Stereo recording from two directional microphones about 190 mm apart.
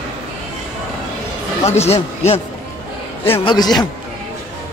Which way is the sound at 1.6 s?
35° left (ahead or behind).